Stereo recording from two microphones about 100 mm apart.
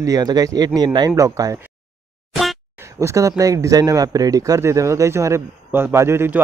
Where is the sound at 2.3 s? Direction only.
Centre (ahead or behind).